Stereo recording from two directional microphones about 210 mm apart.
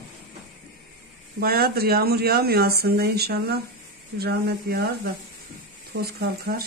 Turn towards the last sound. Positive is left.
turn(degrees=-50)  # may be behind; listen again after turning